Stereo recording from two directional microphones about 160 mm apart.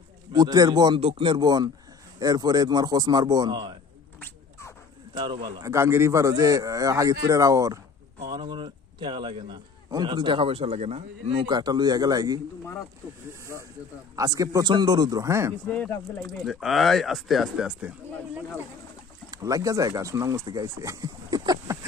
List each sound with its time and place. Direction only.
0.3 s a man's voice: 25° right (ahead or behind)
4.2 s a sound: 15° left (ahead or behind)
5.1 s a man's voice: 30° right (ahead or behind)
11.4 s a man's voice: 25° right (ahead or behind)
14.1 s a man's voice: 20° right (ahead or behind)
15.7 s speech: 10° left (ahead or behind); by 18.4 s 5° right (ahead or behind)
19.3 s a man's voice: 20° right (ahead or behind)